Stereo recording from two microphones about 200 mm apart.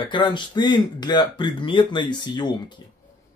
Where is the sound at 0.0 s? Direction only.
25° left (ahead or behind).